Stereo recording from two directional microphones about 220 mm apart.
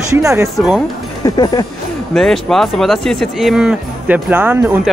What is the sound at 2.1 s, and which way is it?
Speech, centre (ahead or behind).